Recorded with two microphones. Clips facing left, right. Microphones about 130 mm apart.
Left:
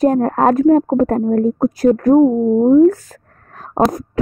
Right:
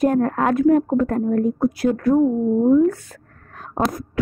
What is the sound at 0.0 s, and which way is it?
A woman's voice, 35° left (ahead or behind).